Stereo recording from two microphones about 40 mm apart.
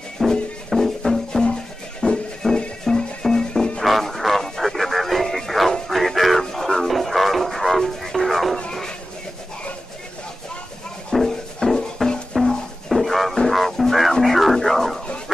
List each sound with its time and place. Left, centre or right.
0.2 s music: centre
3.8 s music: centre
11.2 s music: centre
14.2 s a sound: centre